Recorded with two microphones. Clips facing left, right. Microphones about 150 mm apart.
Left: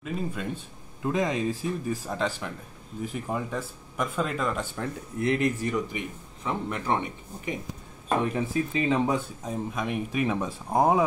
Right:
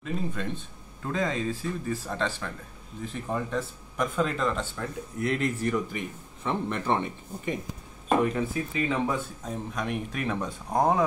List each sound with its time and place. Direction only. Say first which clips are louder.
0.0 s speech: even; 5° left (ahead or behind)
4.7 s speech: left 2 dB; 20° left (ahead or behind)
8.7 s speech: left 3 dB; 25° left (ahead or behind)
9.4 s speech: left 2 dB; 5° left (ahead or behind)